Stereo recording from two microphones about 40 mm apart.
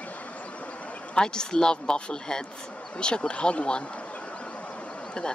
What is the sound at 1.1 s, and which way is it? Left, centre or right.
Speech, centre.